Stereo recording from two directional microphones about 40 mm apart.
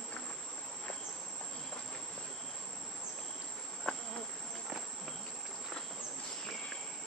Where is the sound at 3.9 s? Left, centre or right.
Centre.